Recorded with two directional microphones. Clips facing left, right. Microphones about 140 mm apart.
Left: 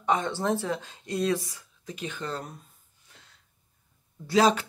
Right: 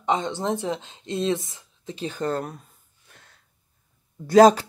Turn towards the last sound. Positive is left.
turn(degrees=-40)  # may be behind; listen again after turning